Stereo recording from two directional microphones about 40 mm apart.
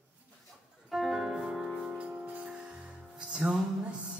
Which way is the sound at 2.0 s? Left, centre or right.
Right.